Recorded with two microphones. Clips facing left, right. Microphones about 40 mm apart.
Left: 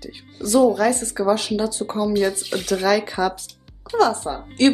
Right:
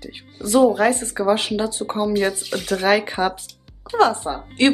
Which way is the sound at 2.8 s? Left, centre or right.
Right.